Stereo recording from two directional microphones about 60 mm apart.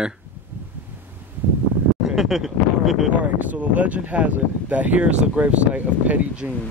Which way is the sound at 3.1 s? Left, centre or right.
Right.